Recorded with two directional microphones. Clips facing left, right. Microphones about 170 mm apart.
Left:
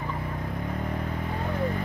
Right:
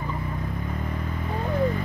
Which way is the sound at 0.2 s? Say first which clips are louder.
Right 1 dB; 60° left (ahead or behind).